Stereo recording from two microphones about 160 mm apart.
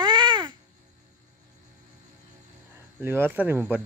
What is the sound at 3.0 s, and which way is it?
Speech, 15° right (ahead or behind).